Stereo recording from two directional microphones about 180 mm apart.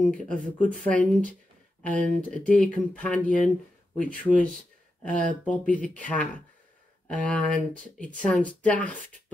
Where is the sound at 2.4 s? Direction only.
5° left (ahead or behind).